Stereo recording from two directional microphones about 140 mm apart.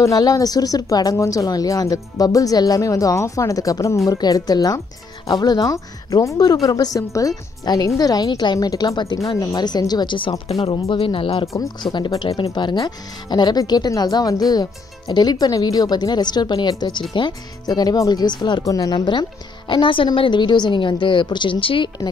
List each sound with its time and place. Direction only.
0.0 s a woman's voice: 25° left (ahead or behind)